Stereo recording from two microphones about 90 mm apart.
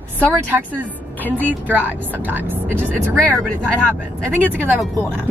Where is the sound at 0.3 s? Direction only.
15° right (ahead or behind).